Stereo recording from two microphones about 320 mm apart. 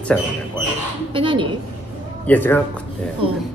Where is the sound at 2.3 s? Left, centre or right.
Centre.